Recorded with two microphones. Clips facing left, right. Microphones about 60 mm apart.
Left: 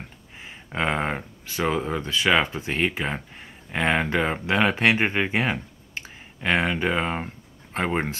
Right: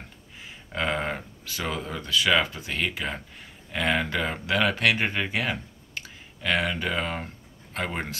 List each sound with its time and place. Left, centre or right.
0.4 s speech: left